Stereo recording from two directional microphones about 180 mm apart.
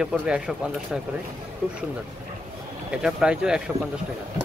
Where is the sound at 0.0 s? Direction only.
5° right (ahead or behind).